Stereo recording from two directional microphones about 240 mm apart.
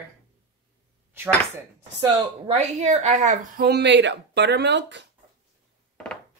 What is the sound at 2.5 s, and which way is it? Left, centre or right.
A woman's voice, right.